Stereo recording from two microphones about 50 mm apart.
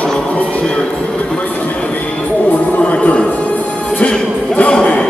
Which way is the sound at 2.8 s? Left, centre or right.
Left.